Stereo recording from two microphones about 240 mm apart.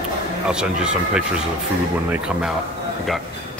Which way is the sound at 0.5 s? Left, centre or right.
Centre.